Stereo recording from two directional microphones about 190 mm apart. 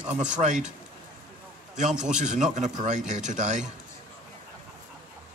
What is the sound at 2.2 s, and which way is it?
Speech, 40° right (ahead or behind).